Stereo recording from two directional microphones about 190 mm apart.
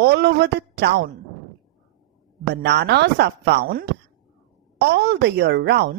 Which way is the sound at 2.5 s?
65° right (ahead or behind).